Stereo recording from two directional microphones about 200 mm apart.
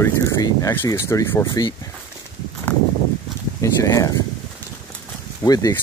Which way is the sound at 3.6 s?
15° left (ahead or behind).